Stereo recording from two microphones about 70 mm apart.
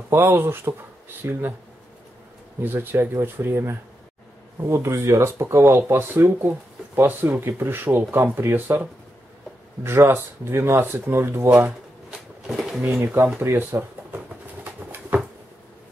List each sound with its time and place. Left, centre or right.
0.1 s speech: right
2.6 s speech: right
9.8 s speech: right
12.4 s a sound: centre
13.0 s speech: right
13.4 s a sound: right